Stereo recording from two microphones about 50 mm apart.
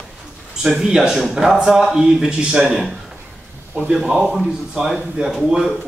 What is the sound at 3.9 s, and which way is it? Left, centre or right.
Speech, centre.